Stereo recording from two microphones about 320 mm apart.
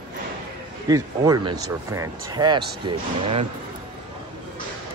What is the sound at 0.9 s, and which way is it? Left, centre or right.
Speech, centre.